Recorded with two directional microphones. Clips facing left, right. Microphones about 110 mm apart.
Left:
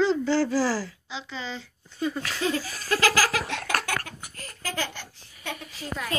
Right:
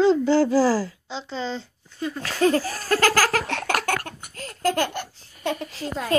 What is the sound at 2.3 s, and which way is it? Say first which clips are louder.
Speech: right 8 dB; 45° right (ahead or behind).